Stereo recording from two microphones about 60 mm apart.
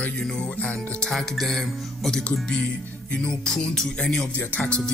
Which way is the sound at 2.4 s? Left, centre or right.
Centre.